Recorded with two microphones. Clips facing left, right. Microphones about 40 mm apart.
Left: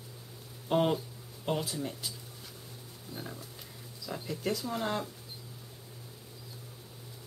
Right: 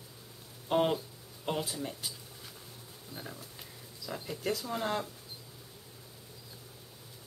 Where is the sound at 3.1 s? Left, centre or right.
Centre.